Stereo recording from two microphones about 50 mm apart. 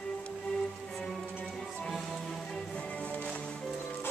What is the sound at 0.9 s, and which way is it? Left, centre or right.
Music, centre.